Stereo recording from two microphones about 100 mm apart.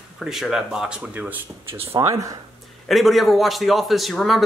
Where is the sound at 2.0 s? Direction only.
30° right (ahead or behind).